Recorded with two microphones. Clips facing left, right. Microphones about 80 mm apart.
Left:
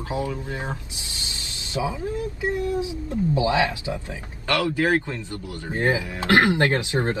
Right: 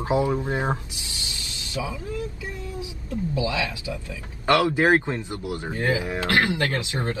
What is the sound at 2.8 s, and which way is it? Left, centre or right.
Speech, left.